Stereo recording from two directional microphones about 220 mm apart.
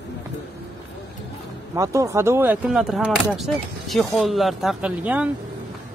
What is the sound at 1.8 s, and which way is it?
Speech, 15° right (ahead or behind).